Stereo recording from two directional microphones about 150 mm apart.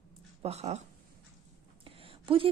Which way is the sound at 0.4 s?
45° right (ahead or behind).